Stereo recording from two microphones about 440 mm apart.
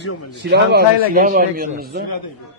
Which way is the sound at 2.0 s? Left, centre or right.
Left.